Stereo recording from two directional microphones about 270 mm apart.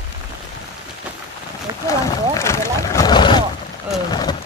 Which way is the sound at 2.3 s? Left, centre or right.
Centre.